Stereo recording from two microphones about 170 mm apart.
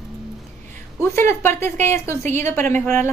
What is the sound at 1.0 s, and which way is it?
A woman's voice, 15° left (ahead or behind).